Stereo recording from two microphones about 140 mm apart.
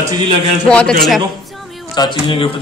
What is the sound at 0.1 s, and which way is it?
Speech, 35° right (ahead or behind).